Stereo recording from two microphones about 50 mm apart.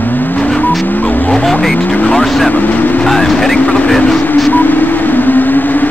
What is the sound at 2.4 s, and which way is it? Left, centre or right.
Speech, left.